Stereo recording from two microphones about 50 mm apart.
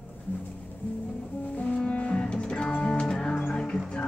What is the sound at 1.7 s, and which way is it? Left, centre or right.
Music, centre.